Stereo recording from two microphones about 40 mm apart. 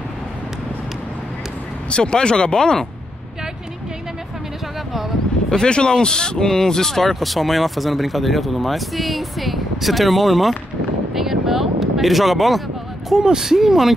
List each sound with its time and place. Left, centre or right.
1.9 s speech: left
5.5 s speech: left; by 10.5 s centre
11.1 s a sound: centre
13.1 s speech: centre